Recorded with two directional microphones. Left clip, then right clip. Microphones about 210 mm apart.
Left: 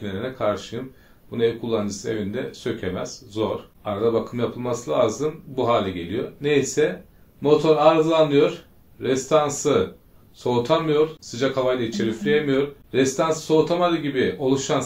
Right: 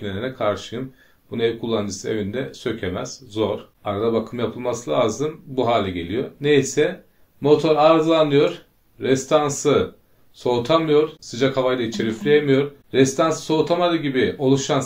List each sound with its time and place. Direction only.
0.0 s speech: 45° right (ahead or behind)